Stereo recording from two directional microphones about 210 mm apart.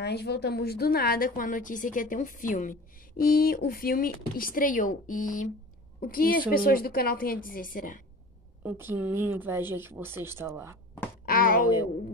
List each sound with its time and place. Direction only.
0.0 s a woman's voice: 50° left (ahead or behind)
8.6 s speech: 10° right (ahead or behind)
11.2 s a sound: 40° left (ahead or behind)